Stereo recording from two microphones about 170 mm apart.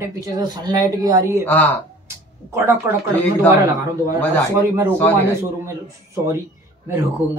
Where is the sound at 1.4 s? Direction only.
10° left (ahead or behind).